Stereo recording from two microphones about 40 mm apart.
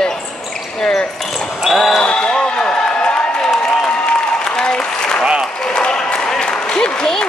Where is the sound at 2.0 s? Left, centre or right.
Left.